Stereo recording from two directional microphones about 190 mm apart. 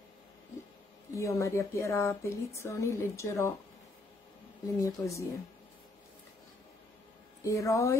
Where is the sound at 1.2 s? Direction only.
15° left (ahead or behind).